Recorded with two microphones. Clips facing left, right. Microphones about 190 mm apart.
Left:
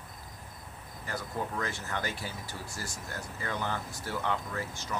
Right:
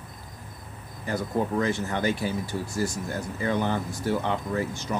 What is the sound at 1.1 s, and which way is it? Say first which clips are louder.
Speech: right 9 dB; 20° right (ahead or behind).